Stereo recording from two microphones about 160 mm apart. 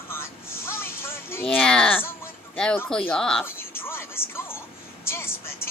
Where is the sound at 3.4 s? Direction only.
15° left (ahead or behind).